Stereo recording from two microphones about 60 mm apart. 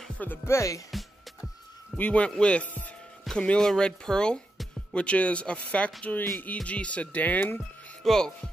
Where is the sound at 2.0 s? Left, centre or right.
Left; by 4.4 s centre.